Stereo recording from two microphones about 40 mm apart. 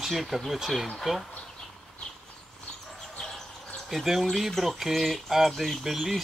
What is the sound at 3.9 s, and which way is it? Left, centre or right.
Speech, centre.